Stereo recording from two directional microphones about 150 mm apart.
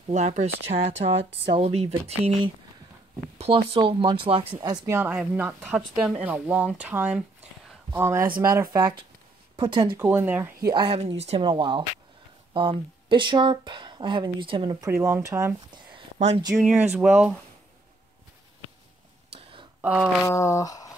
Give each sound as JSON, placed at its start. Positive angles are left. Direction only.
{"t": 0.1, "sound": "speech", "side_deg": -50}
{"t": 4.6, "sound": "a woman's voice", "side_deg": -20}
{"t": 10.0, "sound": "a woman's voice", "side_deg": -10}
{"t": 10.6, "sound": "speech", "side_deg": -30}
{"t": 11.1, "sound": "speech", "side_deg": -40}
{"t": 15.0, "sound": "a woman's voice", "side_deg": -15}
{"t": 16.9, "sound": "speech", "side_deg": -5}
{"t": 19.8, "sound": "speech", "side_deg": -5}
{"t": 20.2, "sound": "speech", "side_deg": 20}